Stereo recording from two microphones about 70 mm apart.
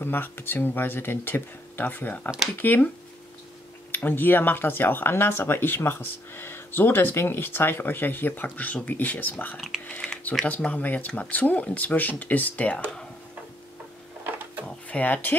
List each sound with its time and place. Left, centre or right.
0.0 s speech: left
3.9 s speech: left
14.9 s speech: left